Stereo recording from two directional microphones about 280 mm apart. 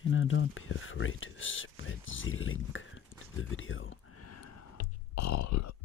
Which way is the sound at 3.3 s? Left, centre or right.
Left.